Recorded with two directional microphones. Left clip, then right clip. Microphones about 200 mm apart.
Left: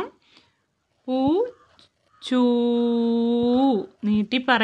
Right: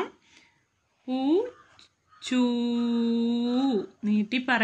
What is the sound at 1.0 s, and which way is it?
Speech, 55° left (ahead or behind).